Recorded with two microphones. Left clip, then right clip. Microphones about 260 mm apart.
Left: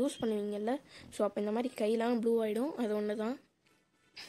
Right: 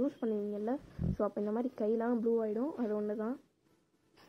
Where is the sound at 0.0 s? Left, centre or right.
Left.